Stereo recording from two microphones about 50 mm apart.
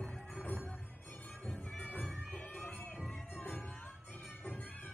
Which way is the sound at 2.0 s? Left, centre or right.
Centre.